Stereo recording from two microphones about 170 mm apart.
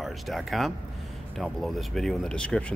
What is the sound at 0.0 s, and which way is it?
Speech, centre (ahead or behind).